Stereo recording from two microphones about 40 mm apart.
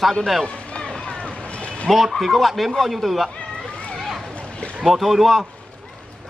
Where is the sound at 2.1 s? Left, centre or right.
Centre.